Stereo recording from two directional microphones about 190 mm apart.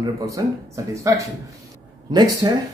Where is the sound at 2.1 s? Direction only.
20° right (ahead or behind).